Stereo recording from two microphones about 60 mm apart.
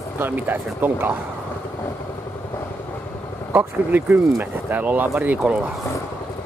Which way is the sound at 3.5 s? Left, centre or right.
Right.